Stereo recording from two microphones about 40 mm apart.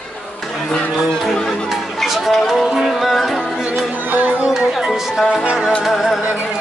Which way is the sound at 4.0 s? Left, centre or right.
Right.